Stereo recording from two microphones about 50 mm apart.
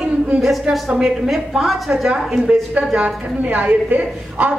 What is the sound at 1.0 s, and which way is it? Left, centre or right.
Speech, centre.